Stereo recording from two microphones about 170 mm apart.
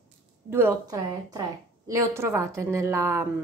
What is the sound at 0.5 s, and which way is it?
A woman's voice, 15° right (ahead or behind).